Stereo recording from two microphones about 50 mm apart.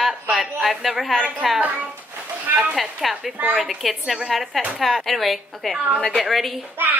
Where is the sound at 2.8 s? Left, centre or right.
Centre.